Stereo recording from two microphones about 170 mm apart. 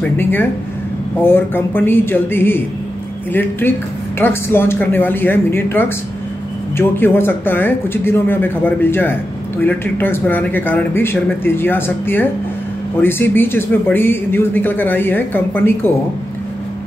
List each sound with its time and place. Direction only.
0.0 s speech: 10° left (ahead or behind)
4.2 s speech: 15° left (ahead or behind)